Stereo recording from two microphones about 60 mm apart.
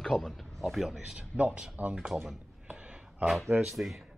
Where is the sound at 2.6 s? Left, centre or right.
Centre.